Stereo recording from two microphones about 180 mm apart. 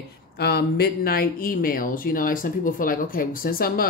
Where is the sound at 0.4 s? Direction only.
60° left (ahead or behind).